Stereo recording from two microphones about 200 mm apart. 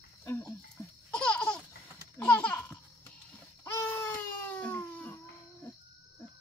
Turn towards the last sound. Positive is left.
turn(degrees=10)  # may be behind; listen again after turning